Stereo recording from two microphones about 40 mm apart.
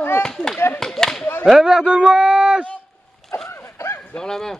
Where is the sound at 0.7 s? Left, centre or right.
Centre.